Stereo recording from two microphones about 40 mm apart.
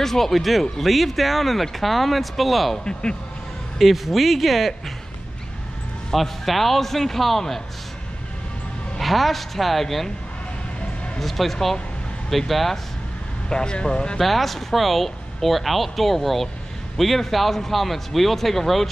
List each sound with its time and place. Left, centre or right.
0.0 s speech: centre
2.8 s speech: left
3.7 s speech: centre
6.1 s speech: centre
9.0 s speech: centre
11.1 s speech: centre
13.5 s speech: left
14.1 s speech: centre